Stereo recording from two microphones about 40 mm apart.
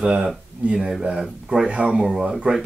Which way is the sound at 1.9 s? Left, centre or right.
Centre.